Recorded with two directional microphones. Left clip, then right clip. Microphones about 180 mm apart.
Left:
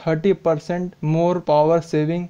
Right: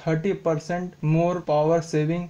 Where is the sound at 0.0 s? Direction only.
45° left (ahead or behind).